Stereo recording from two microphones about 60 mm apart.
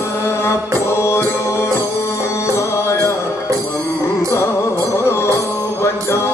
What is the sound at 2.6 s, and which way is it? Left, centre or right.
Music, left.